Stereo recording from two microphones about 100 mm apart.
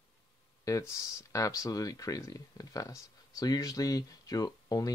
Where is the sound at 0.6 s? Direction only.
35° left (ahead or behind).